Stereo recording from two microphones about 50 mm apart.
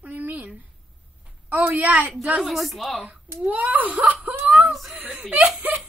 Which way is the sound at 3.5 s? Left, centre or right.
Right.